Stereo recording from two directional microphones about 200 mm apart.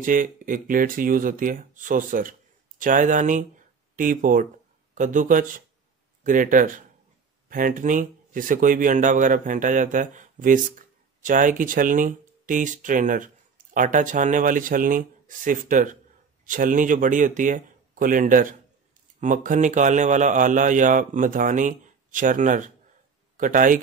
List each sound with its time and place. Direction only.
0.0 s a man's voice: 40° right (ahead or behind)